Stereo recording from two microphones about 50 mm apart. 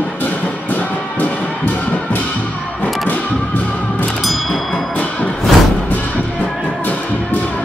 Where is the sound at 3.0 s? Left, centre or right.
Left.